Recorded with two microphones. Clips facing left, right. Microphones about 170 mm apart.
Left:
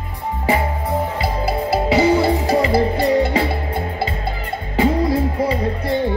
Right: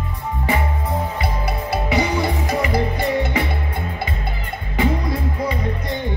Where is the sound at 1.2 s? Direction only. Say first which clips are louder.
Left 4 dB; 25° left (ahead or behind).